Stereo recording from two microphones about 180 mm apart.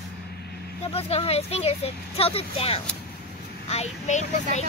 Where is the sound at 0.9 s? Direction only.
35° left (ahead or behind).